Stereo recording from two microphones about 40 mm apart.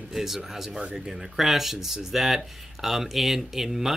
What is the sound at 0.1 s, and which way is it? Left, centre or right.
Speech, centre.